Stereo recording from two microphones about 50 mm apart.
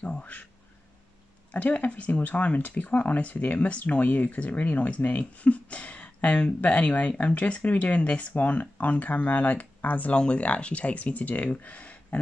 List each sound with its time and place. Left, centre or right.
0.0 s a sound: left
1.5 s speech: left
10.2 s speech: left